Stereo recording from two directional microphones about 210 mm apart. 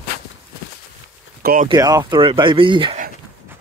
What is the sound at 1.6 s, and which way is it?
Speech, 15° right (ahead or behind).